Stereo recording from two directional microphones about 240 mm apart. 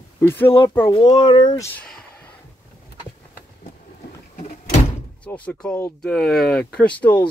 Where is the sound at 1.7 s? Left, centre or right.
Centre.